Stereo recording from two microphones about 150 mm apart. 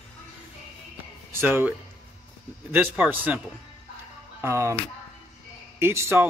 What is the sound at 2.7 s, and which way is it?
Speech, 10° right (ahead or behind).